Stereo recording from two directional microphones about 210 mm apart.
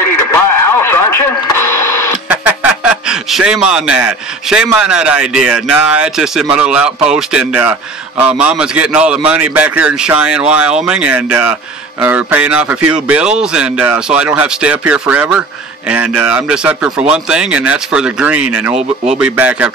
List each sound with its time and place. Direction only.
0.3 s radio: 10° left (ahead or behind)
2.2 s a man's voice: 5° right (ahead or behind)